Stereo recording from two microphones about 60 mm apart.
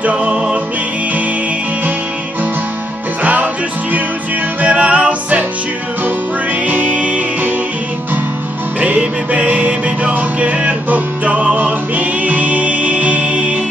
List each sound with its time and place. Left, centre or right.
0.0 s music: right
4.6 s music: right
6.7 s music: right
8.8 s music: right